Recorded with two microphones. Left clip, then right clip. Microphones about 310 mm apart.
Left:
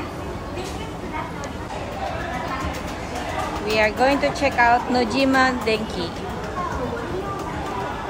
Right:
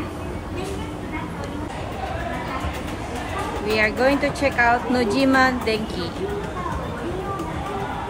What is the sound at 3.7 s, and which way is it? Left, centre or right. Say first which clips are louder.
Speech: left 1 dB; centre.